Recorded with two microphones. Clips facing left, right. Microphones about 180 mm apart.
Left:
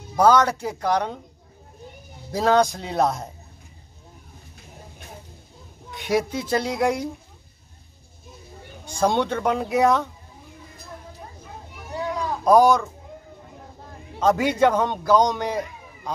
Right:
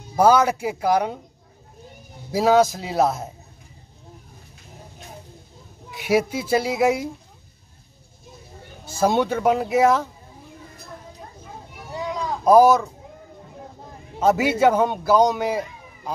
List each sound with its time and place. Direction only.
0.1 s speech: 10° right (ahead or behind)
2.3 s speech: 5° right (ahead or behind)
5.9 s speech: 5° right (ahead or behind)
8.8 s speech: 5° right (ahead or behind)
11.9 s a sound: 15° right (ahead or behind)
12.4 s speech: 5° right (ahead or behind)
14.2 s speech: 5° right (ahead or behind)